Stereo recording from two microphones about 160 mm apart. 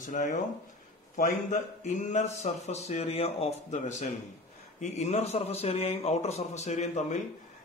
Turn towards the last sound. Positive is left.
turn(degrees=50)  # may be behind; listen again after turning